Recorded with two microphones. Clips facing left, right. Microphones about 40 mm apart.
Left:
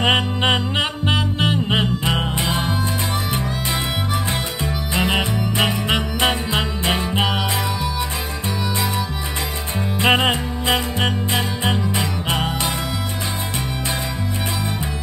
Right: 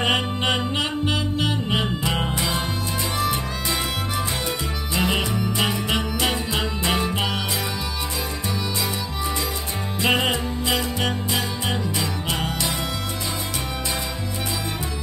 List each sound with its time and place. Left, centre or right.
0.0 s music: left
4.9 s music: left
9.9 s music: left